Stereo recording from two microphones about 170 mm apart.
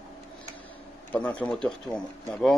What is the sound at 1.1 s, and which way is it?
Speech, 10° left (ahead or behind).